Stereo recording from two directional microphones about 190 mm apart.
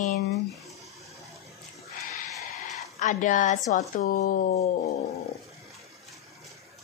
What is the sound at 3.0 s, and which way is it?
Speech, 40° left (ahead or behind).